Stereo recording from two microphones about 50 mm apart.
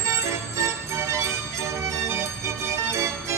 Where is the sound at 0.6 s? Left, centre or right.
Right.